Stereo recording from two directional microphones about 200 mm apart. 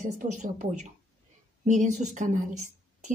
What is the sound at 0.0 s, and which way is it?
A woman's voice, 40° right (ahead or behind).